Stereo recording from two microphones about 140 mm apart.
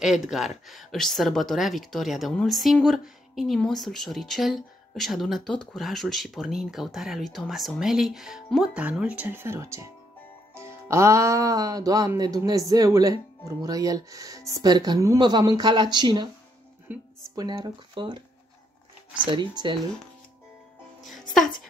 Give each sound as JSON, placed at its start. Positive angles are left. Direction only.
{"t": 0.0, "sound": "speech", "side_deg": -5}
{"t": 16.9, "sound": "speech", "side_deg": -10}
{"t": 17.4, "sound": "speech", "side_deg": -30}
{"t": 19.2, "sound": "speech", "side_deg": -35}
{"t": 21.0, "sound": "music", "side_deg": 0}